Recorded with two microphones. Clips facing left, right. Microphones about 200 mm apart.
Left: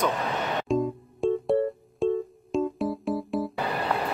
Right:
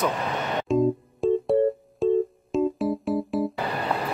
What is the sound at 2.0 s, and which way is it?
Keyboard, centre (ahead or behind).